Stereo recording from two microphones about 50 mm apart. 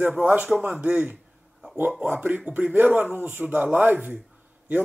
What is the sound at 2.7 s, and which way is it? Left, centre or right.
Speech, right.